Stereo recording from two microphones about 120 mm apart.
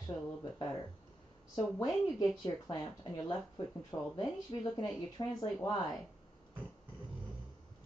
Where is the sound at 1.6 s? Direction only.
35° left (ahead or behind).